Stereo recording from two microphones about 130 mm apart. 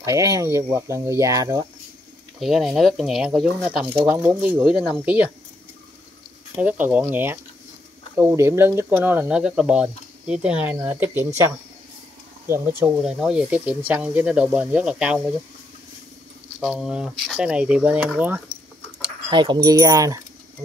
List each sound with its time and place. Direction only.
0.0 s speech: 25° right (ahead or behind)
2.4 s speech: centre (ahead or behind)
6.5 s speech: 10° right (ahead or behind)
12.4 s speech: 15° right (ahead or behind)
13.0 s speech: 5° right (ahead or behind)
16.5 s speech: 5° right (ahead or behind)
19.3 s speech: 35° right (ahead or behind)
19.7 s speech: 25° right (ahead or behind)